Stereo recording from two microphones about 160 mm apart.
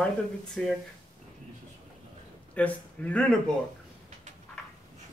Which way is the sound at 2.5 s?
10° left (ahead or behind).